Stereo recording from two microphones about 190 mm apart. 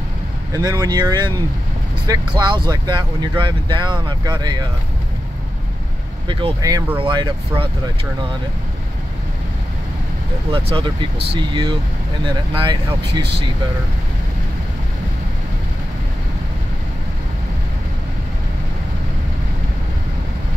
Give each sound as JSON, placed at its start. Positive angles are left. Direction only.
{"t": 0.5, "sound": "speech", "side_deg": -20}
{"t": 6.2, "sound": "speech", "side_deg": -20}
{"t": 10.5, "sound": "speech", "side_deg": -25}